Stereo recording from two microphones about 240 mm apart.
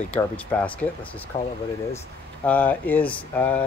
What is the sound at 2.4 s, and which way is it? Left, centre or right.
Speech, centre.